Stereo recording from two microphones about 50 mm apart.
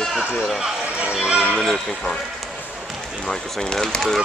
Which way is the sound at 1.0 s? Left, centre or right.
Centre.